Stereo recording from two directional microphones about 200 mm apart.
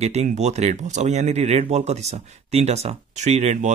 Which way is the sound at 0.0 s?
35° right (ahead or behind).